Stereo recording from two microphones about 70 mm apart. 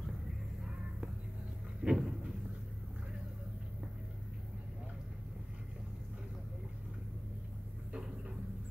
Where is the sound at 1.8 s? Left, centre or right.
Centre.